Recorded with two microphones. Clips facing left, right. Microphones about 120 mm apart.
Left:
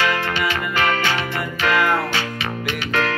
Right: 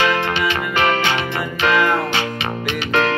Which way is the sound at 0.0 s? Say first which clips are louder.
Right 3 dB; 20° right (ahead or behind).